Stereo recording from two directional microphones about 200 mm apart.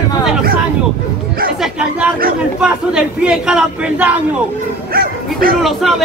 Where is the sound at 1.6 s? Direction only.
5° right (ahead or behind).